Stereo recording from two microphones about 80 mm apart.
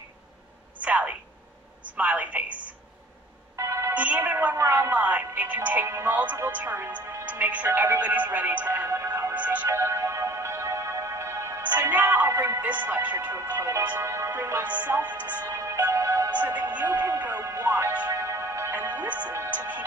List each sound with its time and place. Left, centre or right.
0.7 s a sound: centre
1.9 s a woman's voice: centre
3.5 s a sound: right
3.9 s a sound: centre
5.9 s speech: right
9.7 s music: right
11.8 s speech: right
14.3 s speech: right
15.5 s music: right
16.3 s speech: right
17.5 s music: right
18.7 s music: right
19.5 s speech: centre